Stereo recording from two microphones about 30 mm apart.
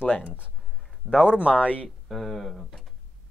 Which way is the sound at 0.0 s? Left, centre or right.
Left.